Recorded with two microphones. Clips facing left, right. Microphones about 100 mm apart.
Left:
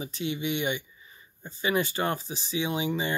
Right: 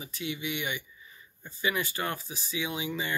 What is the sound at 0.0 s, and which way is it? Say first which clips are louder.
Speech: left 5 dB; 30° left (ahead or behind).